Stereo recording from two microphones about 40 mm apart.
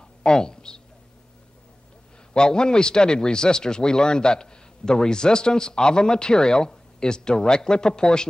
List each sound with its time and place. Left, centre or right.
0.2 s speech: centre
2.3 s speech: left